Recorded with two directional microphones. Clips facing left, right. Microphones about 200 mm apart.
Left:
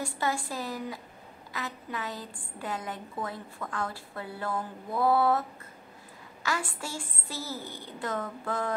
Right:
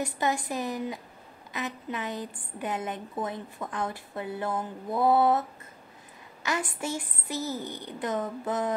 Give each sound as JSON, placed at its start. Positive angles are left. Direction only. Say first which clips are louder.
{"t": 0.0, "sound": "a woman's voice", "louder": "right 3 dB", "side_deg": -20}
{"t": 6.4, "sound": "a woman's voice", "louder": "right 3 dB", "side_deg": -20}